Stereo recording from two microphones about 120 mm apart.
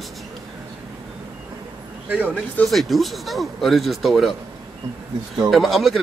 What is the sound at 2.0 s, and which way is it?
Speech, 15° right (ahead or behind).